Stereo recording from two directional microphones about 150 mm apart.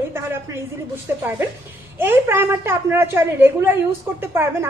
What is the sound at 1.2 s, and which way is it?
A woman's voice, 15° right (ahead or behind).